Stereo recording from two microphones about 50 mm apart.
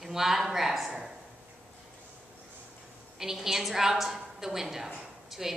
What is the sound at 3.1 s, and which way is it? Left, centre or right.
A woman's voice, centre.